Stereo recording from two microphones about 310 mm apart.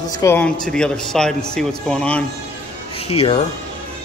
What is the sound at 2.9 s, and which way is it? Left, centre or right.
Speech, centre.